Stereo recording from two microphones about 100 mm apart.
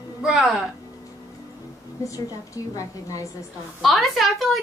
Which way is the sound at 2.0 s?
35° left (ahead or behind).